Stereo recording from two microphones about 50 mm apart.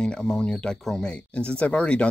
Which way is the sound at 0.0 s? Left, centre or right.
Centre.